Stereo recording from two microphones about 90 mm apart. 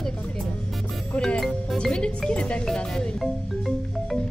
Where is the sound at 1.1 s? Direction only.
5° left (ahead or behind).